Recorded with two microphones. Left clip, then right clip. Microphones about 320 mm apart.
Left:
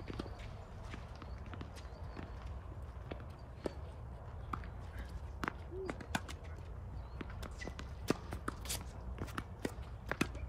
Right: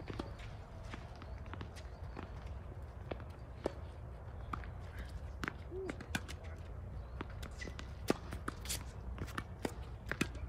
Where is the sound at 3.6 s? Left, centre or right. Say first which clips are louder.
Right 2 dB; right.